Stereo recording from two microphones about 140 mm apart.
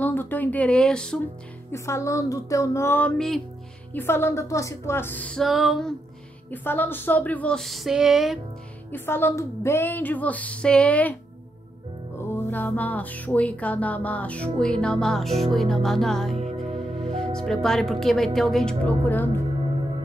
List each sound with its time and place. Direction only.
0.0 s speech: 15° left (ahead or behind)
1.7 s speech: 20° left (ahead or behind)
3.2 s speech: centre (ahead or behind)
3.9 s music: 15° left (ahead or behind)
6.5 s music: 15° left (ahead or behind); by 8.4 s centre (ahead or behind)
8.9 s music: 15° left (ahead or behind)
12.2 s music: 15° left (ahead or behind)
17.0 s speech: 5° left (ahead or behind)